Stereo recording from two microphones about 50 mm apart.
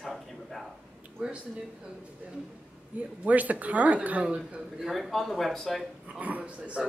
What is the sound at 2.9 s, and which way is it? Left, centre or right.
A woman's voice, right.